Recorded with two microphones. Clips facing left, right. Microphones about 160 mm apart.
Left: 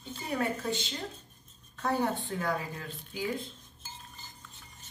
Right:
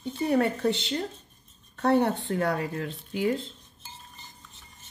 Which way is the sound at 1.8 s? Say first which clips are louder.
Right 7 dB; 70° right (ahead or behind).